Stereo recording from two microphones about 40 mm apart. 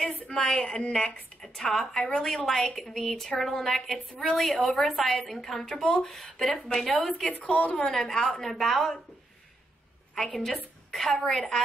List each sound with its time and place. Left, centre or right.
0.3 s a woman's voice: centre
1.4 s a woman's voice: centre
7.4 s a woman's voice: left
7.8 s a woman's voice: centre
10.1 s a woman's voice: centre